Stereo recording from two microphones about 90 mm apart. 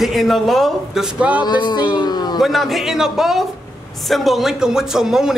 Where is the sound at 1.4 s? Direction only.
55° left (ahead or behind).